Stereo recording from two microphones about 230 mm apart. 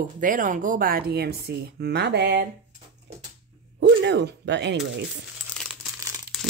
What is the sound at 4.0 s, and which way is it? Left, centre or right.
Speech, right.